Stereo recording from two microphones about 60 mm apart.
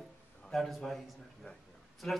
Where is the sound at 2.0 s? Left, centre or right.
Centre.